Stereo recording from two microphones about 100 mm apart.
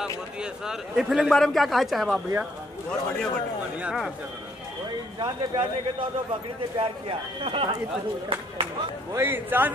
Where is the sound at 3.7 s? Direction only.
10° right (ahead or behind).